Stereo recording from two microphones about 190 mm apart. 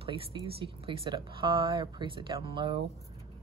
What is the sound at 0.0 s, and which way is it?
Speech, 25° right (ahead or behind).